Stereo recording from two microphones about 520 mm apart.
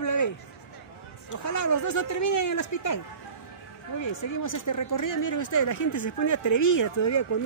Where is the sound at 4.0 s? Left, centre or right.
Left.